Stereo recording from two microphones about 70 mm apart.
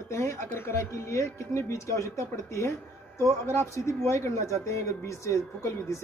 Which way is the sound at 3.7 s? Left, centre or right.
Left.